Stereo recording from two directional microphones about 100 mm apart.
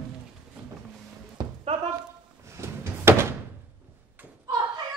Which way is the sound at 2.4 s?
30° right (ahead or behind).